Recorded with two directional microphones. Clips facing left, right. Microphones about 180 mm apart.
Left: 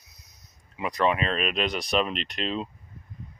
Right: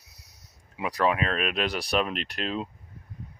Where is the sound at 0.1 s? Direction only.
75° right (ahead or behind).